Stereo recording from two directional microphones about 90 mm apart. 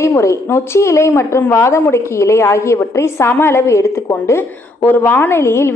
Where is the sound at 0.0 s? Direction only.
30° left (ahead or behind).